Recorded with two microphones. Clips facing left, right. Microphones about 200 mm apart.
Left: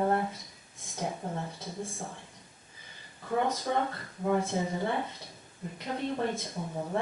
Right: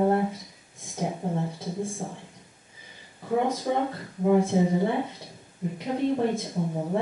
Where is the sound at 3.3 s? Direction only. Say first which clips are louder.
Right 4 dB; 10° right (ahead or behind).